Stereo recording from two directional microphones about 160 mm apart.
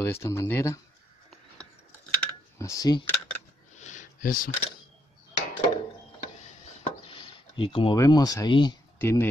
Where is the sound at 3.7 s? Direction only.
50° left (ahead or behind).